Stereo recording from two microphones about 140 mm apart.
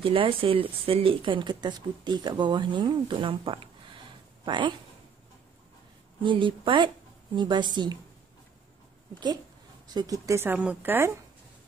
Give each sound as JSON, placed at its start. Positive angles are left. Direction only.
{"t": 0.0, "sound": "speech", "side_deg": -40}
{"t": 6.2, "sound": "speech", "side_deg": -35}
{"t": 9.9, "sound": "speech", "side_deg": -25}